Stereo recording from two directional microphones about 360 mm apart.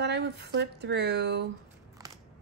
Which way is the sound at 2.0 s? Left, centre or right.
Centre.